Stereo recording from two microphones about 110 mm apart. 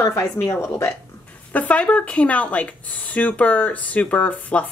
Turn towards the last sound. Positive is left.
turn(degrees=15)  # may be behind; listen again after turning